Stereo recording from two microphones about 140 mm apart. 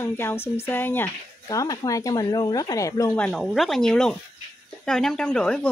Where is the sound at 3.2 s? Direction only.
Centre (ahead or behind).